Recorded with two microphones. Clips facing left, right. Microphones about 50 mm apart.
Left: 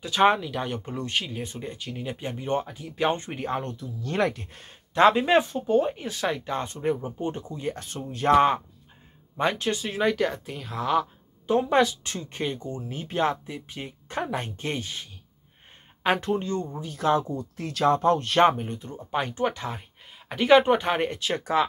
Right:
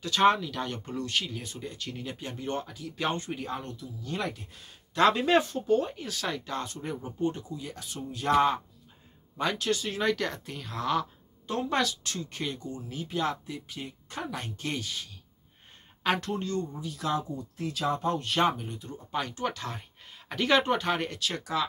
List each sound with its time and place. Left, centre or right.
0.0 s speech: centre
1.8 s speech: centre
3.3 s speech: left
4.0 s speech: left
4.9 s speech: left
16.0 s speech: left
16.7 s speech: left
17.2 s speech: left